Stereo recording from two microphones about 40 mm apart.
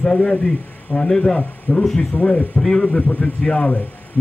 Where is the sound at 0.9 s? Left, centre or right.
Left.